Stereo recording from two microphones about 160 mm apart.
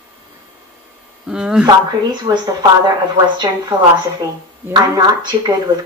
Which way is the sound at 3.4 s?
25° right (ahead or behind).